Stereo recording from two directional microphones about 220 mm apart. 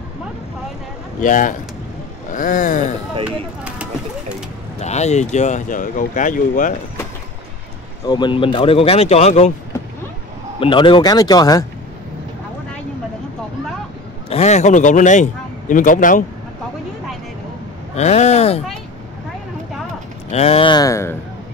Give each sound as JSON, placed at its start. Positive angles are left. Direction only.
{"t": 1.2, "sound": "speech", "side_deg": 35}
{"t": 4.7, "sound": "speech", "side_deg": 30}
{"t": 8.0, "sound": "speech", "side_deg": 20}
{"t": 10.6, "sound": "speech", "side_deg": 20}
{"t": 14.3, "sound": "speech", "side_deg": 30}
{"t": 17.9, "sound": "speech", "side_deg": 30}
{"t": 20.2, "sound": "speech", "side_deg": 30}